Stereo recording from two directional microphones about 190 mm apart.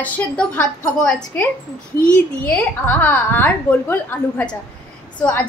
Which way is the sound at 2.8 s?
10° left (ahead or behind).